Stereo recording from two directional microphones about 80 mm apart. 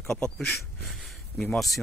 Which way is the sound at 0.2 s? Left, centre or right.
Centre.